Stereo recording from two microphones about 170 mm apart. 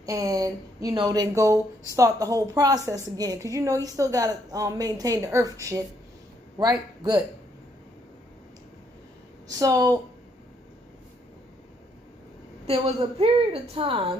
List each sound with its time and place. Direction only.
0.0 s a woman's voice: 20° right (ahead or behind)
9.6 s a woman's voice: 20° right (ahead or behind)
12.6 s a woman's voice: 35° right (ahead or behind)